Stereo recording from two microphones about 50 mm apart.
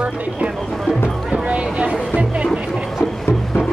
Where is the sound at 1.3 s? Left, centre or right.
Right.